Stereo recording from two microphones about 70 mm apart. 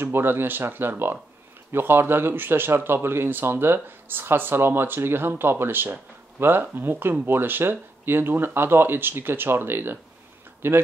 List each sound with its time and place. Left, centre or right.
0.0 s speech: right